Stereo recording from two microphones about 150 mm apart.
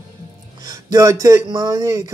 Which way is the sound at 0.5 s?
25° right (ahead or behind).